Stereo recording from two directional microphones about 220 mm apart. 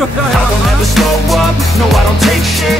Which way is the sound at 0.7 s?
Centre (ahead or behind).